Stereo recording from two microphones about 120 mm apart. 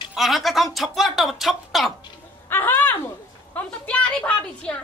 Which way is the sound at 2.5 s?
15° left (ahead or behind).